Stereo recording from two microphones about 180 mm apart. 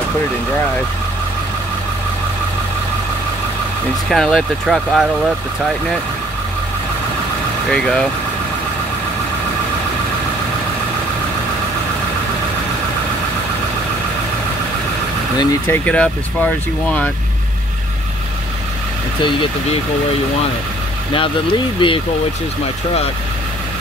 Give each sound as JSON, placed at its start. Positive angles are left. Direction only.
{"t": 4.1, "sound": "speech", "side_deg": 0}
{"t": 7.7, "sound": "speech", "side_deg": 5}
{"t": 15.3, "sound": "speech", "side_deg": 15}
{"t": 21.1, "sound": "speech", "side_deg": 30}